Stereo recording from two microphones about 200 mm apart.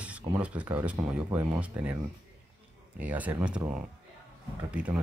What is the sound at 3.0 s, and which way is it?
Speech, 10° right (ahead or behind).